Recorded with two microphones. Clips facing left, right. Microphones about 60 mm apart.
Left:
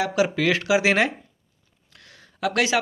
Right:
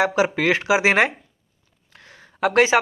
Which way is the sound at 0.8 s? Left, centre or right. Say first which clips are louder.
Right 5 dB; right.